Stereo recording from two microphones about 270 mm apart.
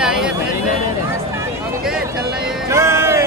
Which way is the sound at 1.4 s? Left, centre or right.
Centre.